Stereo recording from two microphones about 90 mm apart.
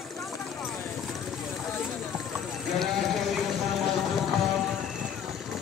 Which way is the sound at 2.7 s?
Centre (ahead or behind).